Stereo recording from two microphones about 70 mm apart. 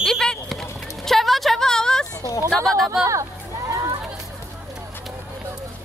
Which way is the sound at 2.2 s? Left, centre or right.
Right.